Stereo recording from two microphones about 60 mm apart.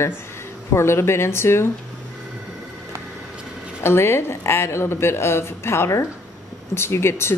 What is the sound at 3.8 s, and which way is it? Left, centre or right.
Speech, left.